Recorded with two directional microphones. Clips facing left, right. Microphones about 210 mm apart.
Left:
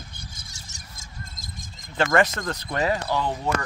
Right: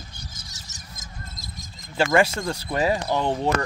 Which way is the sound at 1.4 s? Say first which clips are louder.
Right 1 dB; 50° left (ahead or behind).